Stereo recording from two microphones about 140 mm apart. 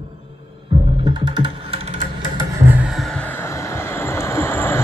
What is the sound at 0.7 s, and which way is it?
Music, 40° right (ahead or behind).